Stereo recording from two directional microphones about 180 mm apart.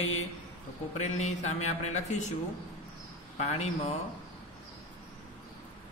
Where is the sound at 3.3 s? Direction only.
40° left (ahead or behind).